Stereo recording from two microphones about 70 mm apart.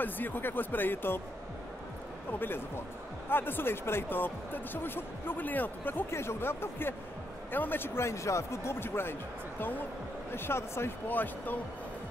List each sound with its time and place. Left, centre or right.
0.0 s speech: left
2.3 s speech: left